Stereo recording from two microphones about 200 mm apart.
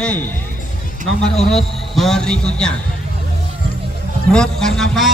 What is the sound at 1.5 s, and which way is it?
A man's voice, centre (ahead or behind).